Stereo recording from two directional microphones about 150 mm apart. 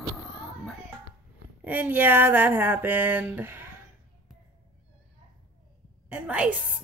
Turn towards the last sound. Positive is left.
turn(degrees=-10)  # may be behind; listen again after turning